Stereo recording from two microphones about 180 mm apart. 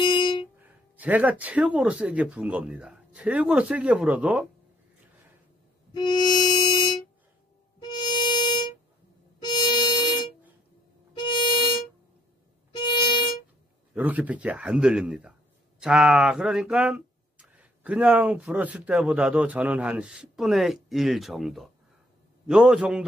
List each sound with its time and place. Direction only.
0.0 s music: 25° left (ahead or behind)
0.9 s speech: 10° right (ahead or behind)
5.9 s music: 25° left (ahead or behind)
12.7 s music: 25° left (ahead or behind)
13.9 s speech: 10° right (ahead or behind)